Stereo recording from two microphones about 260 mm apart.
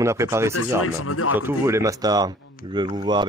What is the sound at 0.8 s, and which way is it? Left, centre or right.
Speech, left.